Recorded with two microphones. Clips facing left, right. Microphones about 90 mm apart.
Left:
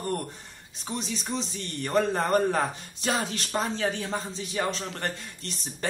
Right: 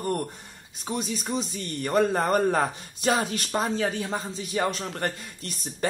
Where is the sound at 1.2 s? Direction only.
10° right (ahead or behind).